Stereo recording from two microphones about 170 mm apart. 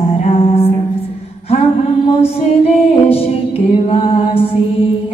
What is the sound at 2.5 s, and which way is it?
Music, 35° left (ahead or behind).